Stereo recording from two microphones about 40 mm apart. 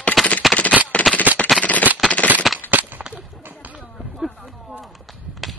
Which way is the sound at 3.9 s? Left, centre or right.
Centre.